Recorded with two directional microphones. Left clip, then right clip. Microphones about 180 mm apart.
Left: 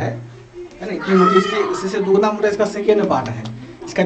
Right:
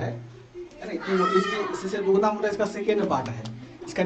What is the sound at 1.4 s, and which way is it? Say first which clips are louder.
A man's voice: left 9 dB; 15° left (ahead or behind).